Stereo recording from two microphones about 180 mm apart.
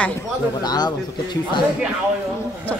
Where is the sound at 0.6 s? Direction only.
25° left (ahead or behind).